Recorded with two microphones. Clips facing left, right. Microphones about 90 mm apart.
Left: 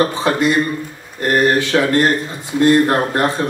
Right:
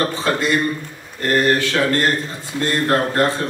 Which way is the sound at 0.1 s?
15° left (ahead or behind).